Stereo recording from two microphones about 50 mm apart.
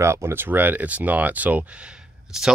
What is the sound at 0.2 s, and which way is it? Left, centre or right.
Speech, right.